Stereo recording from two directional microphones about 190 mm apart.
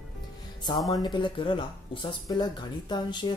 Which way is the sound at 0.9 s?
20° left (ahead or behind).